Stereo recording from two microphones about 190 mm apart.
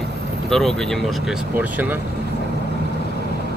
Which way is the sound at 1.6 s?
10° right (ahead or behind).